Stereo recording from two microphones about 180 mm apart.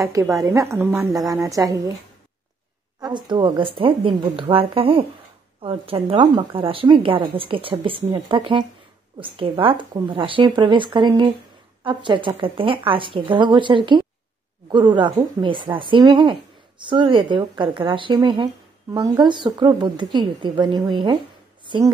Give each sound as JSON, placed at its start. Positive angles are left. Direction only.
{"t": 0.0, "sound": "a woman's voice", "side_deg": -20}
{"t": 3.0, "sound": "speech", "side_deg": -25}